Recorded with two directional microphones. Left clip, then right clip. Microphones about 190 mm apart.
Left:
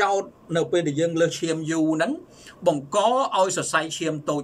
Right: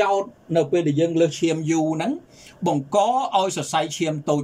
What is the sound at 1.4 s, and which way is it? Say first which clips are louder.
Speech: right 3 dB; 15° right (ahead or behind).